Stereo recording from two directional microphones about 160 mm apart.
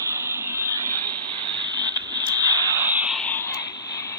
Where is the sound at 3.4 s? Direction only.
15° left (ahead or behind).